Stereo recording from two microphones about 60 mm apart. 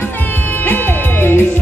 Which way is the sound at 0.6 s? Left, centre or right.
Left.